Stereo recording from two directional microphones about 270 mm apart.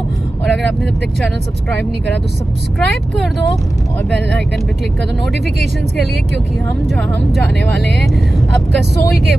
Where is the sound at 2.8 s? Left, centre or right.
Centre.